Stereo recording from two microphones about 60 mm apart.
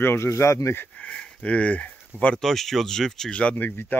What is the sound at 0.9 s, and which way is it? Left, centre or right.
Speech, centre.